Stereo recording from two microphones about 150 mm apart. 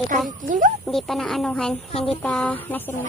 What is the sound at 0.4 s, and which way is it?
Speech, 60° right (ahead or behind).